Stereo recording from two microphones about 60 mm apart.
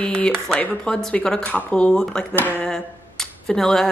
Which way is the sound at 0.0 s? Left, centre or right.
Centre.